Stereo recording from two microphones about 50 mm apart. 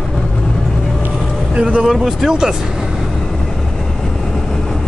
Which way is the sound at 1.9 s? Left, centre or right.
Centre.